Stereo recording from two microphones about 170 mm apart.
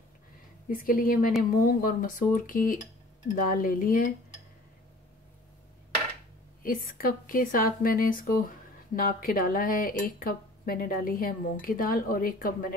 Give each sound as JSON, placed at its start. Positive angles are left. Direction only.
{"t": 0.7, "sound": "speech", "side_deg": 55}
{"t": 6.6, "sound": "speech", "side_deg": 55}